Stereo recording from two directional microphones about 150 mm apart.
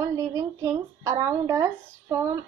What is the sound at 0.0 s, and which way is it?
A woman's voice, 20° right (ahead or behind).